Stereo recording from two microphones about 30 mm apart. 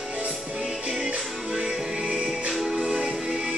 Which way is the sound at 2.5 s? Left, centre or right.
Centre.